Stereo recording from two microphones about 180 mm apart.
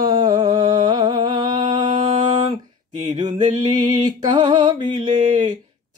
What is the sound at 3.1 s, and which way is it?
Mantra, 25° right (ahead or behind).